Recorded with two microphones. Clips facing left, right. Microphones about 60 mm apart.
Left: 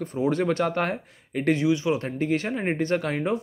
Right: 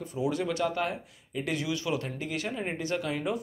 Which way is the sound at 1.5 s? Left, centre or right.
Left.